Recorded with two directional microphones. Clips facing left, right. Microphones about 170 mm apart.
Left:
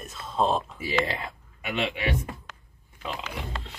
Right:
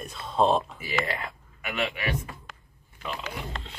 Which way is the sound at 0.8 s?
25° left (ahead or behind).